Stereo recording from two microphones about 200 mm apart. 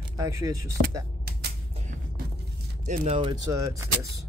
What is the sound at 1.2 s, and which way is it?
Typewriter, 50° right (ahead or behind).